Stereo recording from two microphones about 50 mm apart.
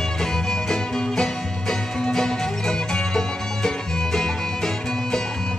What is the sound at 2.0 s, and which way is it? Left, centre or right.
Music, centre.